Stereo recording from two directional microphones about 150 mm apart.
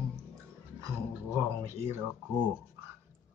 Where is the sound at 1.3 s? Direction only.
15° right (ahead or behind).